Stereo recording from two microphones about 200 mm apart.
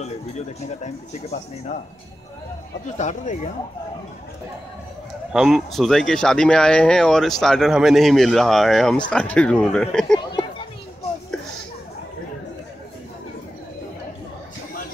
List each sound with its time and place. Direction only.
3.0 s speech: 35° left (ahead or behind)
5.3 s speech: centre (ahead or behind)